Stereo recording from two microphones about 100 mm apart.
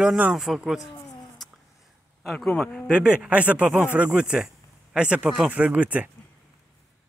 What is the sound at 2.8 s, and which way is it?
Speech, 10° right (ahead or behind).